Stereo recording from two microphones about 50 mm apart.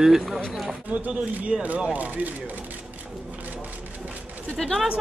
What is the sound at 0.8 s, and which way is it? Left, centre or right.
Speech, right.